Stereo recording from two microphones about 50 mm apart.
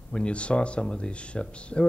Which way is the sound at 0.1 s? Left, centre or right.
Left.